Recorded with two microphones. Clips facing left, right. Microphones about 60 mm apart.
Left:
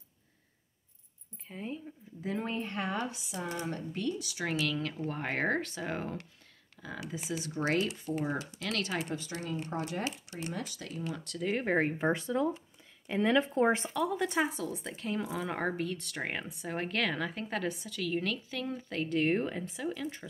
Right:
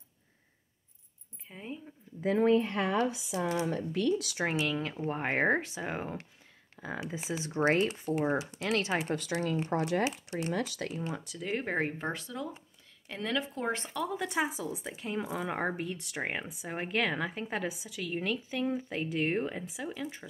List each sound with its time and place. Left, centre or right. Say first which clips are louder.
1.5 s speech: left 3 dB; centre
2.2 s speech: right 10 dB; right
3.5 s speech: right 5 dB; right
4.4 s speech: right 2 dB; right
6.8 s speech: right 3 dB; right
9.1 s speech: right 5 dB; right
9.7 s speech: right 7 dB; right
10.0 s speech: right 5 dB; right
11.0 s speech: left 3 dB; right
11.2 s speech: left 6 dB; centre
12.1 s speech: left 7 dB; left
13.0 s speech: left 6 dB; centre
13.8 s speech: left 3 dB; centre